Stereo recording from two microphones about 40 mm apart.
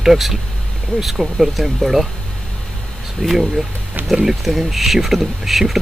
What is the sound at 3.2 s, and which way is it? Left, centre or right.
Speech, centre.